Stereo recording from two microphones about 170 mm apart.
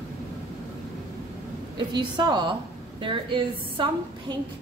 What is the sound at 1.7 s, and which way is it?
A woman's voice, 25° right (ahead or behind).